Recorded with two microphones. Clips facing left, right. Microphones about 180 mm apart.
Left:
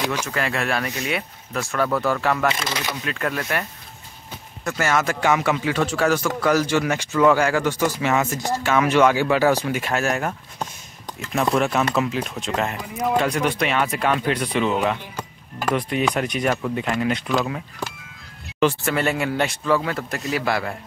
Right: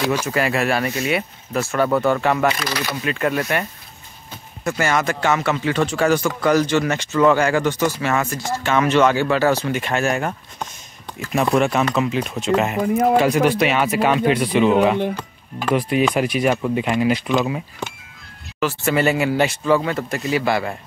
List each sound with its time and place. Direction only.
0.1 s speech: 10° right (ahead or behind)
2.5 s speech: 25° left (ahead or behind)
3.0 s speech: 5° right (ahead or behind)
4.6 s a man's voice: centre (ahead or behind)
11.3 s speech: centre (ahead or behind)
12.8 s speech: 50° right (ahead or behind)
13.2 s speech: 5° right (ahead or behind)
18.6 s speech: centre (ahead or behind)